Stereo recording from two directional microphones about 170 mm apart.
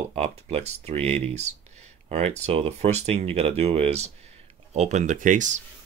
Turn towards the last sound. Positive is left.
turn(degrees=-50)  # may be behind; listen again after turning